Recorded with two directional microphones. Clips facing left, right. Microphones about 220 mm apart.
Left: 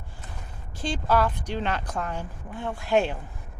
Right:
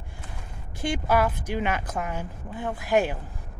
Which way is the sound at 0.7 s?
10° right (ahead or behind).